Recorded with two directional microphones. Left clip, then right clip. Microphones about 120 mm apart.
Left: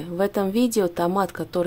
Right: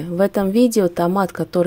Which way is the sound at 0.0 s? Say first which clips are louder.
Right 5 dB; 30° right (ahead or behind).